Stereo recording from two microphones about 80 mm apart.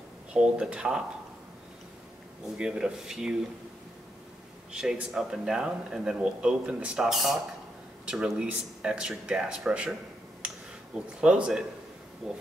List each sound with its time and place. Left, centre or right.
0.3 s speech: centre
2.5 s speech: centre
4.7 s speech: centre
7.1 s speech: centre
8.0 s speech: centre
10.4 s a sound: centre
11.1 s speech: centre